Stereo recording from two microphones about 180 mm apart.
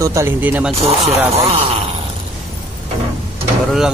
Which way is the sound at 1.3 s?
35° right (ahead or behind).